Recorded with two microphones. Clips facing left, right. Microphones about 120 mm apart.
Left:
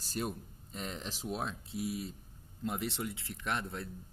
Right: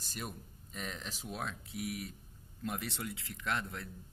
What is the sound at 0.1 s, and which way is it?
Speech, 35° left (ahead or behind).